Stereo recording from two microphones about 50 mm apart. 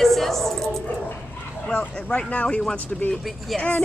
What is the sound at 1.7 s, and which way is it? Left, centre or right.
Speech, left.